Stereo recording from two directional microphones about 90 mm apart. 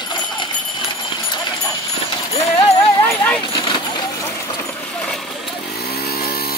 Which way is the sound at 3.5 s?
55° left (ahead or behind).